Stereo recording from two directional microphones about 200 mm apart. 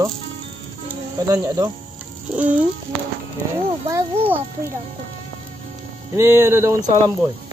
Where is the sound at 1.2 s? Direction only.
15° right (ahead or behind).